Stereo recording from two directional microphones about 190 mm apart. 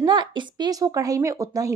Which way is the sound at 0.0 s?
25° right (ahead or behind).